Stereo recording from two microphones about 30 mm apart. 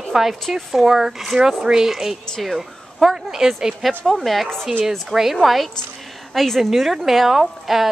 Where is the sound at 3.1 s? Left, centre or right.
Centre.